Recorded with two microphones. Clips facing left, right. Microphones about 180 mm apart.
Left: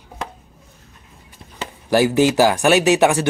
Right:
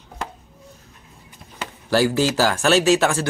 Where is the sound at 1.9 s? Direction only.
15° left (ahead or behind).